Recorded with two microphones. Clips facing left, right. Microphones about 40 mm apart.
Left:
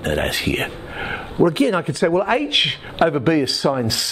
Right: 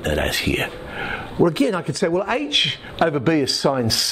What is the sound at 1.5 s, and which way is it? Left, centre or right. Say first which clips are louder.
Speech: left 2 dB; left.